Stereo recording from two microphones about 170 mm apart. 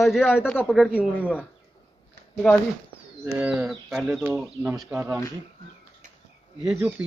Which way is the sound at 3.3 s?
5° right (ahead or behind).